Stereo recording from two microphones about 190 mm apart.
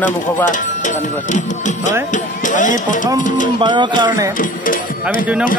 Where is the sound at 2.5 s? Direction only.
40° left (ahead or behind).